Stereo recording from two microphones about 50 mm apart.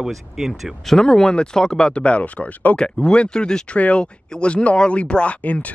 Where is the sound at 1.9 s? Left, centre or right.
Left.